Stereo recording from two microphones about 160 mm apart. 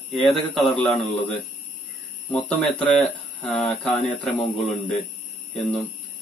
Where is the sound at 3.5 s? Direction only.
40° left (ahead or behind).